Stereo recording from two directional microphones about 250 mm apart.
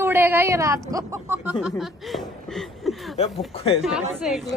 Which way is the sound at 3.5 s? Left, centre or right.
Left.